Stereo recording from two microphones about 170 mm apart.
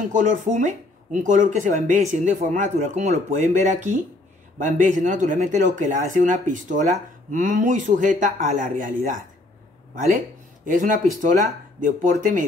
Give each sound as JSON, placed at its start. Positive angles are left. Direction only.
{"t": 0.0, "sound": "speech", "side_deg": -45}
{"t": 10.1, "sound": "speech", "side_deg": -50}